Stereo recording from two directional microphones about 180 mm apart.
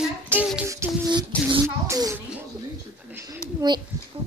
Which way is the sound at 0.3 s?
10° right (ahead or behind).